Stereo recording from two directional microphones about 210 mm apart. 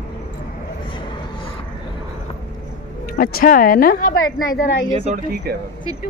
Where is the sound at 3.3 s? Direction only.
40° left (ahead or behind).